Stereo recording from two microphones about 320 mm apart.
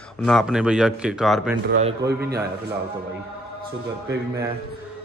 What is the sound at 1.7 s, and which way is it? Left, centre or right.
Speech, right.